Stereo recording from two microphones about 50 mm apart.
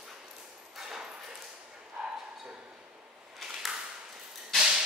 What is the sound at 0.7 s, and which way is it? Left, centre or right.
Dog, centre.